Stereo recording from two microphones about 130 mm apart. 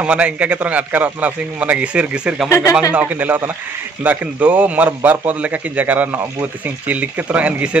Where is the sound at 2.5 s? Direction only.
25° left (ahead or behind).